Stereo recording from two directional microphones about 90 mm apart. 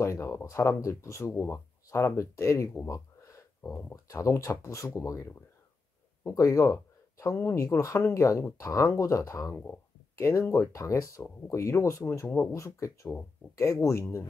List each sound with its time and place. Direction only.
0.0 s speech: 35° left (ahead or behind)
2.9 s a sound: 35° left (ahead or behind)
3.9 s speech: 35° left (ahead or behind)
9.5 s speech: 25° left (ahead or behind)